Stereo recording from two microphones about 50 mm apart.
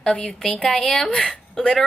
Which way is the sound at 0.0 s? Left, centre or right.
Centre.